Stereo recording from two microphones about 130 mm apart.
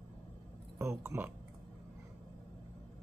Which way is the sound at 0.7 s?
20° right (ahead or behind).